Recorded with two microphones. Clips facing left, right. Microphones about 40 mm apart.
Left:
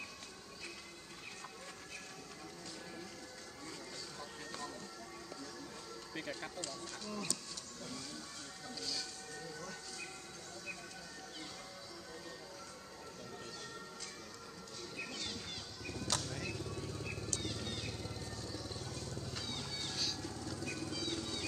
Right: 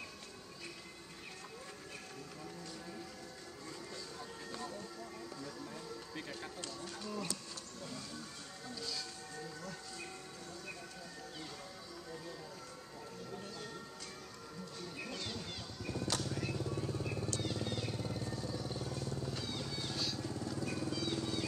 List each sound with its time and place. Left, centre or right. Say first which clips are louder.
4.5 s music: right 2 dB; centre
6.1 s music: left 4 dB; centre
6.6 s music: right 1 dB; centre
15.0 s music: even; centre
15.9 s vehicle: right 2 dB; centre